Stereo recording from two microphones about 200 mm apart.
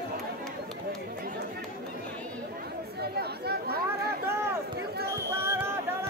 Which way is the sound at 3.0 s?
55° right (ahead or behind).